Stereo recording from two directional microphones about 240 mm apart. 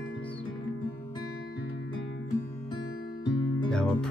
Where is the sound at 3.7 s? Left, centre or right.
Centre.